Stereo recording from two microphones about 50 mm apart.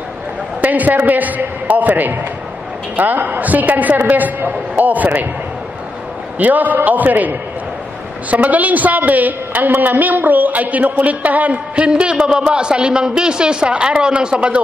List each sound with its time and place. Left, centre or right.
0.6 s a woman's voice: right
6.3 s a woman's voice: right